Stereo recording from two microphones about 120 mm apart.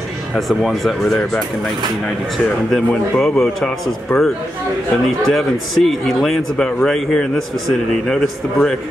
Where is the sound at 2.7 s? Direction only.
5° left (ahead or behind).